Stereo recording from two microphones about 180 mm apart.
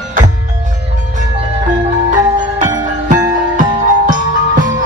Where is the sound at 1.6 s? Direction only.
45° right (ahead or behind).